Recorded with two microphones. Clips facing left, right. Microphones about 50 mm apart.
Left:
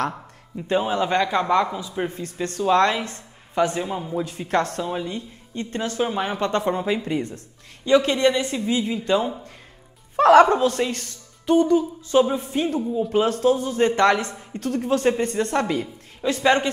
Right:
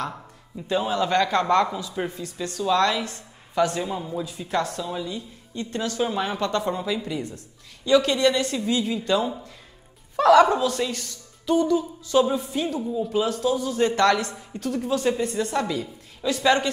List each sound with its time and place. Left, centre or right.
0.7 s a man's voice: left
2.0 s a woman's voice: left
4.2 s a woman's voice: left
6.5 s speech: left
10.1 s a woman's voice: left
14.6 s a woman's voice: left